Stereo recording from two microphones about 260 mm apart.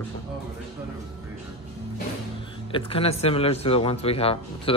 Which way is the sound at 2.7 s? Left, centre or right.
Left.